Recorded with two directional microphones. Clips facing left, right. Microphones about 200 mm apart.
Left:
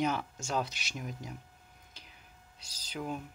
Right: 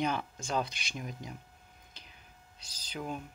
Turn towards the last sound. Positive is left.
turn(degrees=5)  # may be behind; listen again after turning